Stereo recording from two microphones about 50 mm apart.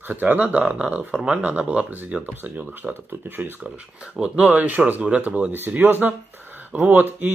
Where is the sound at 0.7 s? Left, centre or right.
Right.